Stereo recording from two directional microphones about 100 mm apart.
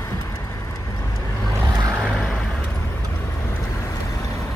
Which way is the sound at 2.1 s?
10° left (ahead or behind).